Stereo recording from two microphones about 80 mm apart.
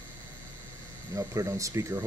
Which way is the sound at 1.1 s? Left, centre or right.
Right.